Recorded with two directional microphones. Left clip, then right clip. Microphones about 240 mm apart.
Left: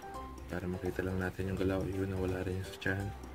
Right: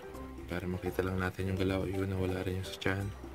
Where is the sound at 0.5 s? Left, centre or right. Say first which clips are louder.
Right 2 dB; right.